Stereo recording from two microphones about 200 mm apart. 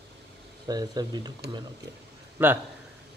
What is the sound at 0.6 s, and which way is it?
Speech, 20° right (ahead or behind).